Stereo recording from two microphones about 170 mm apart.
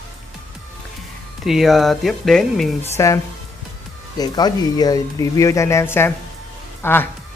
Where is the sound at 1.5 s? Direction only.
Centre (ahead or behind).